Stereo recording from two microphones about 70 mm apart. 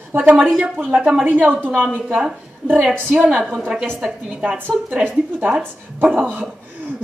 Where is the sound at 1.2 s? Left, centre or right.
Right.